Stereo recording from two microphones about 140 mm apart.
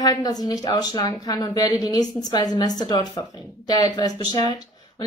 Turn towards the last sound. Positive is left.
turn(degrees=30)  # may be behind; listen again after turning